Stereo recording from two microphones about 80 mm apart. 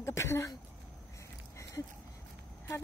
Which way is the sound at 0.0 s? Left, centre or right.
Left.